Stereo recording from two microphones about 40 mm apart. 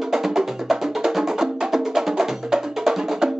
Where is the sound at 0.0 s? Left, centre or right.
Centre.